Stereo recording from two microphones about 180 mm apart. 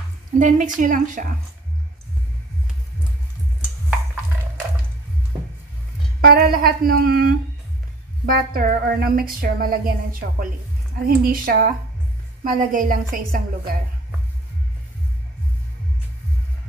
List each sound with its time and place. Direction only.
0.4 s a woman's voice: 45° right (ahead or behind)
6.2 s a woman's voice: 55° right (ahead or behind)